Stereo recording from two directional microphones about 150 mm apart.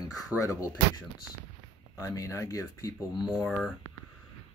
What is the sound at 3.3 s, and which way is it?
Speech, 5° left (ahead or behind).